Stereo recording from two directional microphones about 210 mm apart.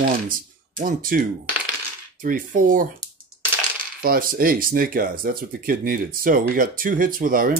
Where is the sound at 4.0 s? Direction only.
45° right (ahead or behind).